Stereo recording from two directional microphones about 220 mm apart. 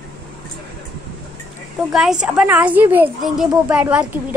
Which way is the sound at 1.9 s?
Centre (ahead or behind).